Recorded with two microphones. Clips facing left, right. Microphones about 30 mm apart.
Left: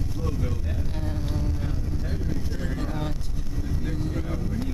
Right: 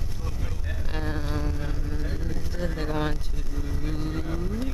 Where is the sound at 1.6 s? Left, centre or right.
Centre.